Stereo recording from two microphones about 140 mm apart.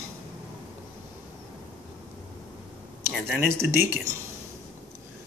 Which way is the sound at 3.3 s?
15° right (ahead or behind).